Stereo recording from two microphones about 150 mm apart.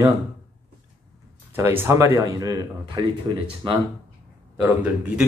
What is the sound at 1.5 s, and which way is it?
Speech, 15° right (ahead or behind).